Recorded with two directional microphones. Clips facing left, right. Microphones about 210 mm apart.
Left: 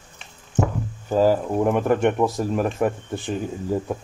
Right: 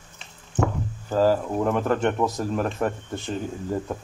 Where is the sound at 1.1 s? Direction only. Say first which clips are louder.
Left 2 dB; 15° left (ahead or behind).